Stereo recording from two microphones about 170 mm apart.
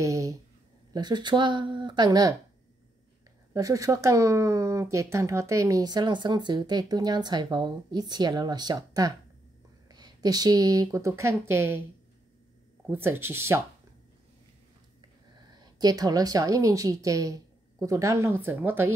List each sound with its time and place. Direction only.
0.0 s a sound: 20° right (ahead or behind)
0.9 s speech: 25° right (ahead or behind)
3.5 s speech: 20° right (ahead or behind)
12.9 s speech: 15° right (ahead or behind)
15.5 s a woman's voice: 25° right (ahead or behind)